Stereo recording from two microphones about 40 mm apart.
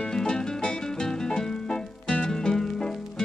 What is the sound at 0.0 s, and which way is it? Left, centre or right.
Music, centre.